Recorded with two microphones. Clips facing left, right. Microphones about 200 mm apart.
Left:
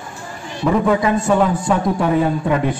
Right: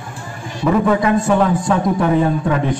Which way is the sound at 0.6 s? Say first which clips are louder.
Right 1 dB; centre (ahead or behind).